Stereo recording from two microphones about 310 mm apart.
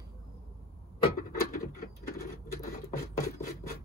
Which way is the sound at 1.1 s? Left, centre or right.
Left.